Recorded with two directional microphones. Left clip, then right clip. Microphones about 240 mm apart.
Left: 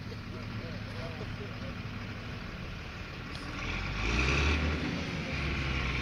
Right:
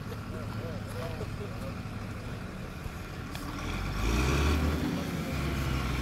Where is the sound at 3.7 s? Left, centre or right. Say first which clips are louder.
Left 1 dB; right.